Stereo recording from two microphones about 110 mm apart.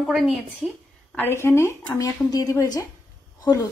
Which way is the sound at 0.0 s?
5° right (ahead or behind).